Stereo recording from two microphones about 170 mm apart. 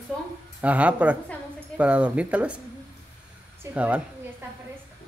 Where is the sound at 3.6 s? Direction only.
10° right (ahead or behind).